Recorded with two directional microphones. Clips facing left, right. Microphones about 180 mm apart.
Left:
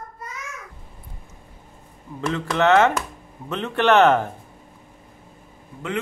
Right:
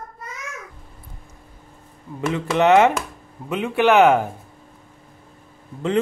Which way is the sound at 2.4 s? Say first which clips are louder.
Right 2 dB; 20° right (ahead or behind).